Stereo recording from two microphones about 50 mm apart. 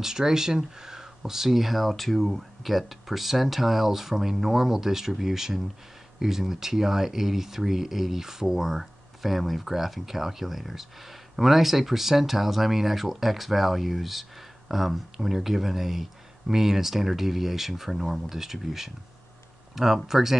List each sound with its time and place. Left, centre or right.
0.0 s speech: centre